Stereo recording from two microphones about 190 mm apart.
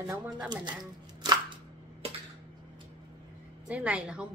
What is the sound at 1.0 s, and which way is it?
Chopping, 20° right (ahead or behind).